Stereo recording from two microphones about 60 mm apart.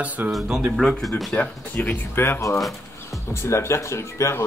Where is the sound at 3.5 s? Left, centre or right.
Left.